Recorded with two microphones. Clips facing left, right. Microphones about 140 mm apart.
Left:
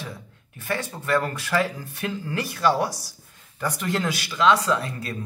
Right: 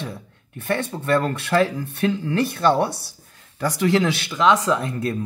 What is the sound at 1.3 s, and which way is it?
Speech, 60° right (ahead or behind).